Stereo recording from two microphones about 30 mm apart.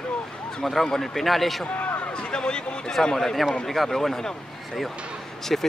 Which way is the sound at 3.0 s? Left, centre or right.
Centre.